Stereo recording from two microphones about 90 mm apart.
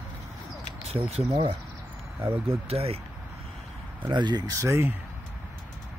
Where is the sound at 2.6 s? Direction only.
90° right.